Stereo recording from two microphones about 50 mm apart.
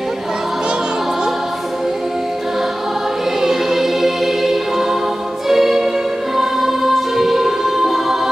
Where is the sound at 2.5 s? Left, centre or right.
Centre.